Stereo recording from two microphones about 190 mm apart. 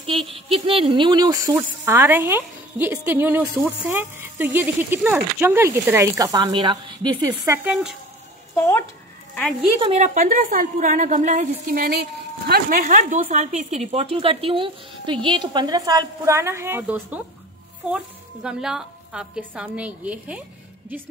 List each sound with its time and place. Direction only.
0.0 s speech: 30° right (ahead or behind)
8.5 s speech: 15° left (ahead or behind)
9.3 s speech: centre (ahead or behind)
9.9 s a woman's voice: 40° right (ahead or behind); by 20.4 s 5° right (ahead or behind)